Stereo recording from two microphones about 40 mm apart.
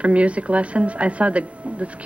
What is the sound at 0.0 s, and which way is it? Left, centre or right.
Speech, right.